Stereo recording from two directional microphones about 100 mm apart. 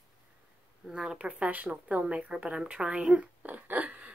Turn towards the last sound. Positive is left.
turn(degrees=-15)  # may be behind; listen again after turning